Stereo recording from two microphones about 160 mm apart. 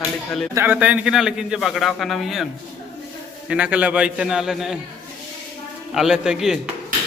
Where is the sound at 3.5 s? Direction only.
10° right (ahead or behind).